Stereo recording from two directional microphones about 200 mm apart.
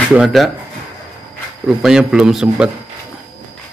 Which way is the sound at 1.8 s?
5° right (ahead or behind).